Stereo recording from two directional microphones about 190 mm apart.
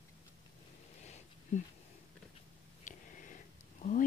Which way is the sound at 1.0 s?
35° left (ahead or behind).